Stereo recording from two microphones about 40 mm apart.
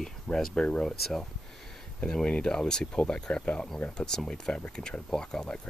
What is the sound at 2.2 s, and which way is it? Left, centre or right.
Speech, left.